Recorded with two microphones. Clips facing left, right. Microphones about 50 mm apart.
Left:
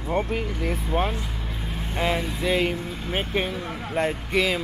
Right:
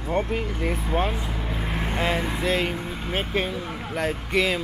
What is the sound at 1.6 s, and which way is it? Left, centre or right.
Vehicle, right.